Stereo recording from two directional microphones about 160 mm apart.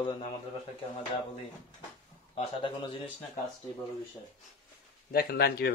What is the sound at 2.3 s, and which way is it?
Speech, 30° left (ahead or behind).